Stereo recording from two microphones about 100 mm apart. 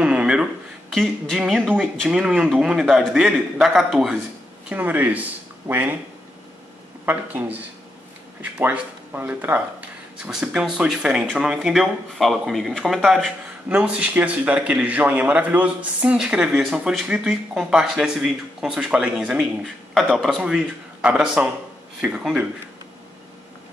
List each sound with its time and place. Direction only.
0.0 s a sound: 10° right (ahead or behind)
0.9 s speech: centre (ahead or behind)
4.6 s speech: 15° right (ahead or behind)
7.1 s speech: 20° right (ahead or behind); by 20.4 s 5° left (ahead or behind)
20.4 s speech: 10° right (ahead or behind)